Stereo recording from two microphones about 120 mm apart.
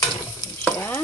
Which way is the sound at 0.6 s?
15° left (ahead or behind).